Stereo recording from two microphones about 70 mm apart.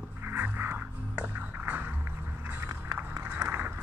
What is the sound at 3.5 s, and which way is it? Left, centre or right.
Run, right.